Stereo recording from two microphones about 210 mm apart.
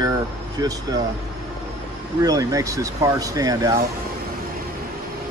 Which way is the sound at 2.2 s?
15° right (ahead or behind).